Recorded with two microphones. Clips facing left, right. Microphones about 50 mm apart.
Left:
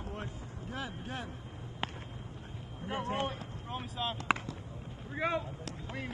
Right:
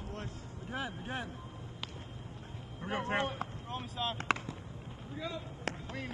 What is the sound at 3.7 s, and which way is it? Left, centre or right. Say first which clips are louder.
Speech: left 2 dB; centre.